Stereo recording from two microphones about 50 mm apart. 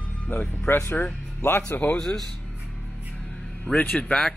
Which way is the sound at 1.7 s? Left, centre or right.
Left.